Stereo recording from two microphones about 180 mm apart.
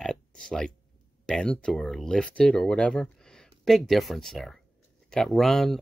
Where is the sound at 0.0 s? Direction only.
5° left (ahead or behind).